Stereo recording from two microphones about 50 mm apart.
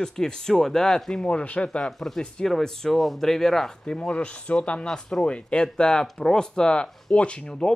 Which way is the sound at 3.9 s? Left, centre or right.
Centre.